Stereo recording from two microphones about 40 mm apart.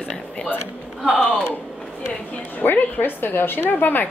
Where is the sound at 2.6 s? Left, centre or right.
Left.